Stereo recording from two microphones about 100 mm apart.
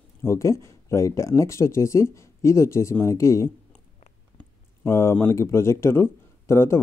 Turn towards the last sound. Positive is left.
turn(degrees=25)  # may be behind; listen again after turning